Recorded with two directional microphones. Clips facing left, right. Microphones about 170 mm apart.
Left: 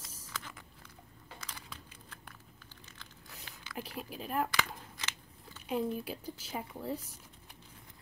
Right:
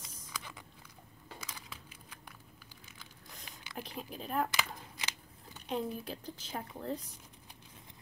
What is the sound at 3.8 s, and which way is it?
Speech, 5° left (ahead or behind).